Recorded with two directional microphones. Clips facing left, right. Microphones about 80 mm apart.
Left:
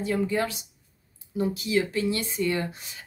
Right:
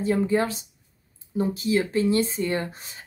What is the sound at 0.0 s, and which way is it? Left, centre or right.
Speech, right.